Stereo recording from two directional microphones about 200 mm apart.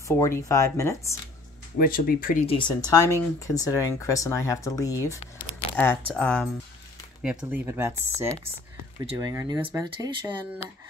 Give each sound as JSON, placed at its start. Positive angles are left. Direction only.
{"t": 0.1, "sound": "speech", "side_deg": 15}
{"t": 1.8, "sound": "speech", "side_deg": 45}
{"t": 2.4, "sound": "speech", "side_deg": 25}